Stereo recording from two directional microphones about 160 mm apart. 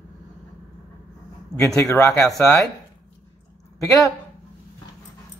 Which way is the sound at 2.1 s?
5° left (ahead or behind).